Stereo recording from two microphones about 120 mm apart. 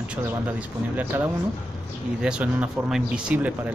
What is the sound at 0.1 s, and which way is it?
Speech, 10° right (ahead or behind).